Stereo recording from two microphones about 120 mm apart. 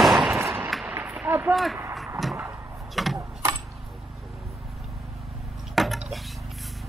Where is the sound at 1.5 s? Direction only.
Centre (ahead or behind).